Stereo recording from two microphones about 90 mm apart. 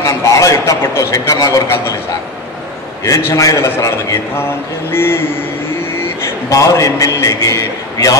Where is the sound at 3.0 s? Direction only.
40° left (ahead or behind).